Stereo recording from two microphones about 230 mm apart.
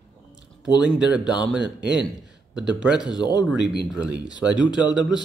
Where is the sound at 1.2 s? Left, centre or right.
Centre.